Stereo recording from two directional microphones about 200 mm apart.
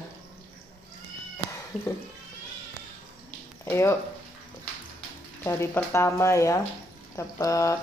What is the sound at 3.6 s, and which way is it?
Speech, 15° left (ahead or behind).